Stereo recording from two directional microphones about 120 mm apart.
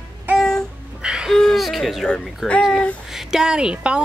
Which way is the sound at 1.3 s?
Centre (ahead or behind).